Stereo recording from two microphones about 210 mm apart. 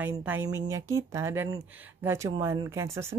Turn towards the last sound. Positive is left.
turn(degrees=-10)  # may be behind; listen again after turning